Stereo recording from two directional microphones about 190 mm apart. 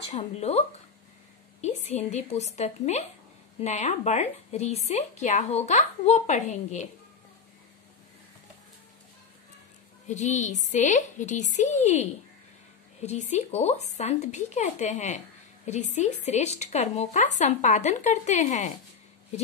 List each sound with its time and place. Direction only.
0.1 s speech: 35° left (ahead or behind)
10.0 s speech: 40° left (ahead or behind)